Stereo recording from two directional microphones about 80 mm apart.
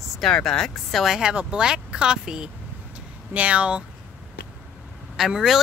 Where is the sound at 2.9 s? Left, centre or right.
Centre.